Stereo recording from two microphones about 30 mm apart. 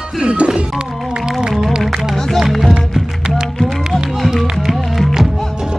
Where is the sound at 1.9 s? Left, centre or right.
Centre.